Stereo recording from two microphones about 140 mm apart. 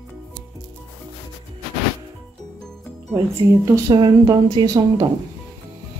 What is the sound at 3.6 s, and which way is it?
Speech, 25° right (ahead or behind).